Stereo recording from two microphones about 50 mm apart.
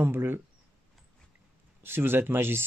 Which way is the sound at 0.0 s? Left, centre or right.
Right.